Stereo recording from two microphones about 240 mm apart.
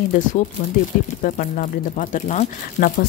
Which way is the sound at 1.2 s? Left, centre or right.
Left.